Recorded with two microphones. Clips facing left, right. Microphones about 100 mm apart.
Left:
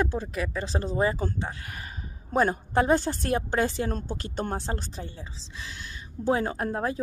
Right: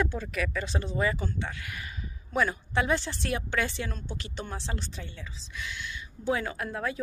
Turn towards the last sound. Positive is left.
turn(degrees=40)  # may be behind; listen again after turning